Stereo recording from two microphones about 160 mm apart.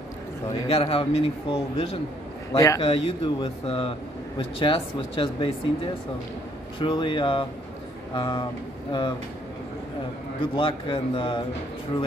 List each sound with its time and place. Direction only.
0.7 s speech: 40° left (ahead or behind)
2.5 s a man's voice: 20° left (ahead or behind)
2.8 s speech: 35° left (ahead or behind)
6.8 s speech: 30° left (ahead or behind)
10.4 s speech: 30° left (ahead or behind)